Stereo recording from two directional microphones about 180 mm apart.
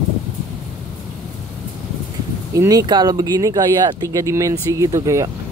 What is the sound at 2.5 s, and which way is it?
Speech, 20° right (ahead or behind).